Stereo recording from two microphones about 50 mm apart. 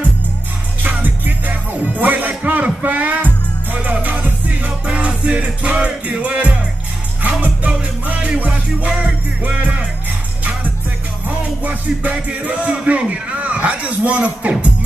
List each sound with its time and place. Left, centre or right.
0.8 s music: right
11.2 s music: right